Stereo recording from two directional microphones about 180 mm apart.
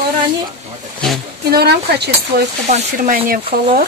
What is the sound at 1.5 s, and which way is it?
Speech, 65° right (ahead or behind).